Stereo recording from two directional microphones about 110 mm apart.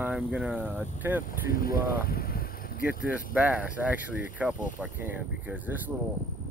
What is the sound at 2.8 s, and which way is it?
Speech, 15° right (ahead or behind).